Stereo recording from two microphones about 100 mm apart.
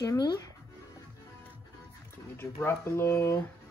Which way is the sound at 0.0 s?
35° left (ahead or behind).